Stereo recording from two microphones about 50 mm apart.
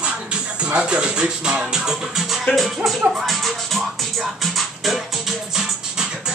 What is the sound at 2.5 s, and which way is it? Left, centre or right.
Speech, centre.